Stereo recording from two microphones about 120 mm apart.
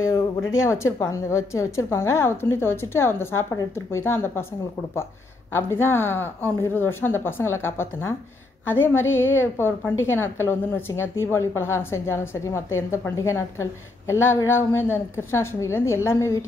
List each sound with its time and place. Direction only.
0.7 s a woman's voice: 25° left (ahead or behind)
5.5 s a woman's voice: 20° left (ahead or behind)